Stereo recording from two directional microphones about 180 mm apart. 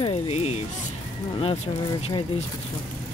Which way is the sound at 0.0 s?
35° left (ahead or behind).